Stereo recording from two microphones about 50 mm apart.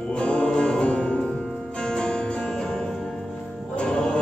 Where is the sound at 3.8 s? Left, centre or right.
Centre.